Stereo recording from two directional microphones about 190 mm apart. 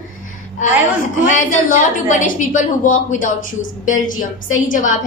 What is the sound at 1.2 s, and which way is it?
A woman's voice, 40° left (ahead or behind).